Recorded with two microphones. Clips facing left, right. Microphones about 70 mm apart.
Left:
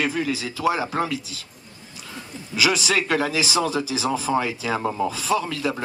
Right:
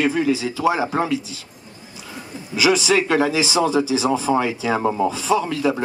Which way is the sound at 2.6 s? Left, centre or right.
Centre.